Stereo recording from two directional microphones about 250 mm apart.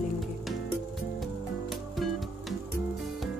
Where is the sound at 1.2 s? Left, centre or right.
Centre.